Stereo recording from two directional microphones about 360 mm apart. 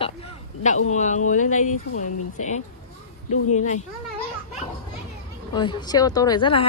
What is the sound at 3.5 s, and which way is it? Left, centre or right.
Speech, centre.